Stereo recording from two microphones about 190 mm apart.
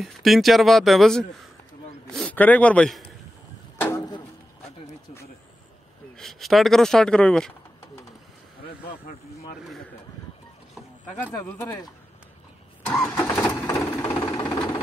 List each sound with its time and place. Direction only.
0.0 s a man's voice: centre (ahead or behind)
3.8 s music: 15° left (ahead or behind)
6.1 s speech: centre (ahead or behind)
11.4 s vehicle: 15° left (ahead or behind)
12.8 s vehicle: 15° left (ahead or behind)
13.5 s a sound: 15° left (ahead or behind)